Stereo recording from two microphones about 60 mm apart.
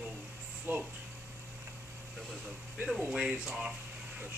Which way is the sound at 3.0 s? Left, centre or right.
Right.